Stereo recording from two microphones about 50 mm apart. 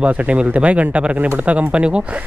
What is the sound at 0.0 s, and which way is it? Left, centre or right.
Speech, right.